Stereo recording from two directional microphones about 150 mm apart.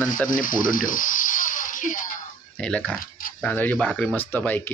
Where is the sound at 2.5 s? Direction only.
5° left (ahead or behind).